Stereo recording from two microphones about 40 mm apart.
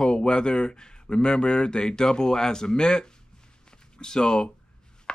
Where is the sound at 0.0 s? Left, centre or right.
Centre.